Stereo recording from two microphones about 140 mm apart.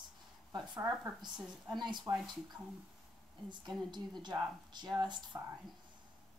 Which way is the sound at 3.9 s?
30° right (ahead or behind).